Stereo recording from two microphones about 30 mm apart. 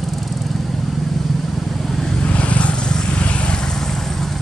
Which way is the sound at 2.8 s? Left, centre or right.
Left.